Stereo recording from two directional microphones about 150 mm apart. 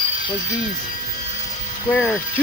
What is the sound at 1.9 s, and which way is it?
Speech, 5° left (ahead or behind).